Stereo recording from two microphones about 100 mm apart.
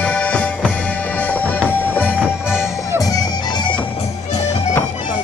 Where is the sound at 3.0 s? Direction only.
40° left (ahead or behind).